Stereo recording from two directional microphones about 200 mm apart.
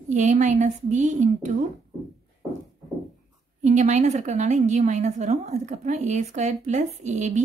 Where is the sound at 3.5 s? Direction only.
35° right (ahead or behind).